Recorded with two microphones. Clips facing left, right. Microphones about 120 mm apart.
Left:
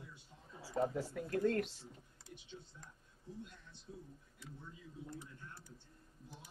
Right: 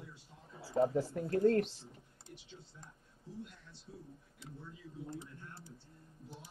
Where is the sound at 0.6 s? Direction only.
30° right (ahead or behind).